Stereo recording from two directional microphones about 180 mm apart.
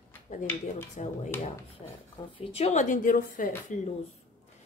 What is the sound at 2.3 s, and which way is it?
Speech, 35° left (ahead or behind).